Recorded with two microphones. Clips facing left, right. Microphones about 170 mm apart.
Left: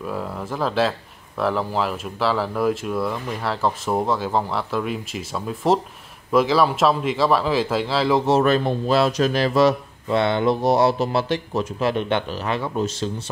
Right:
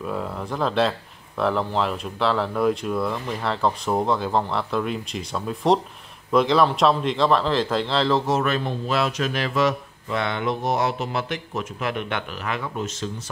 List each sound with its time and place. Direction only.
0.0 s speech: centre (ahead or behind)
8.3 s speech: 35° left (ahead or behind)